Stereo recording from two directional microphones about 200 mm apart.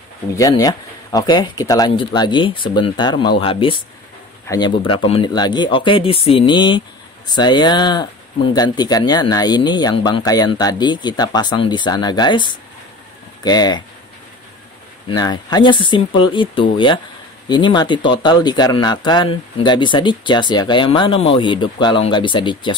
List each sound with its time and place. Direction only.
0.4 s speech: 20° left (ahead or behind)
15.0 s speech: 20° left (ahead or behind)